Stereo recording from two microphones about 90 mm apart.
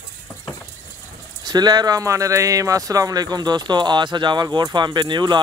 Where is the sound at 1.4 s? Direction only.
50° right (ahead or behind).